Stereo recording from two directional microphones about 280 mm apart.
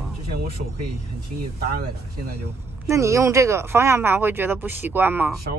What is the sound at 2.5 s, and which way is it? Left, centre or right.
Speech, centre.